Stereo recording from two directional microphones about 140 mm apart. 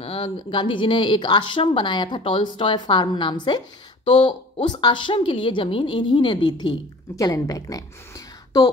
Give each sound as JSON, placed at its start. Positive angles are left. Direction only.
{"t": 0.0, "sound": "speech", "side_deg": 40}